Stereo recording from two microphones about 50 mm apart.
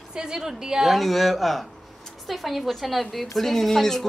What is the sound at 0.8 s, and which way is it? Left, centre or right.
A woman's voice, centre.